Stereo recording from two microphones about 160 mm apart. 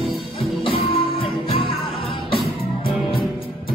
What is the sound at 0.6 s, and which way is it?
Music, 35° left (ahead or behind).